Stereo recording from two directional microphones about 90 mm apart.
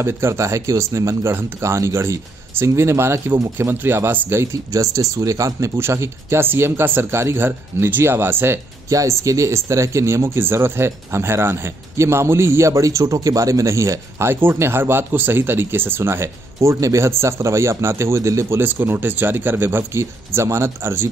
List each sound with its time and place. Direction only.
0.0 s speech: 30° right (ahead or behind)
8.9 s speech: 35° right (ahead or behind)